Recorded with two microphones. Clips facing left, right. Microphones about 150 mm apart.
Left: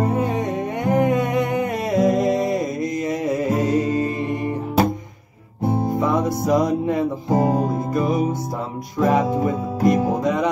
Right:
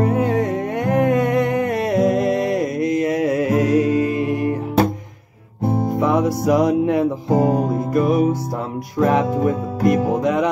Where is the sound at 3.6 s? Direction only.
75° right (ahead or behind).